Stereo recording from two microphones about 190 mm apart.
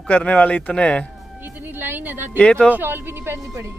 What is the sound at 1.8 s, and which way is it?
Speech, 10° right (ahead or behind).